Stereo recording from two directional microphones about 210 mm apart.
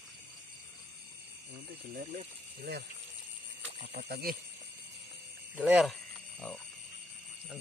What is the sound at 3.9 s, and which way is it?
Speech, 50° right (ahead or behind).